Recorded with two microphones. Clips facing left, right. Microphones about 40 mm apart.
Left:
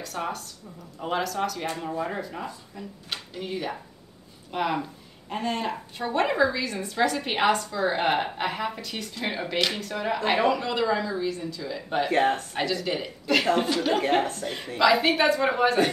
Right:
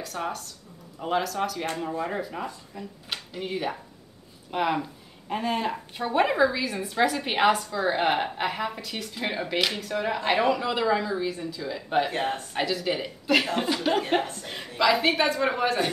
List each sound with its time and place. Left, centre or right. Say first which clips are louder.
0.0 s speech: even; centre
12.1 s speech: left 6 dB; left
12.5 s speech: even; centre